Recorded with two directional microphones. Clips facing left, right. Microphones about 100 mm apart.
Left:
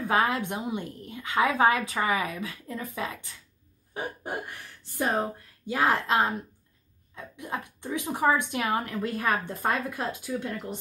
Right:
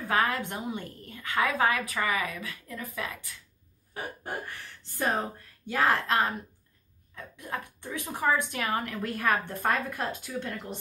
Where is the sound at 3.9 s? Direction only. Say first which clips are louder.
Left 3 dB; 15° left (ahead or behind).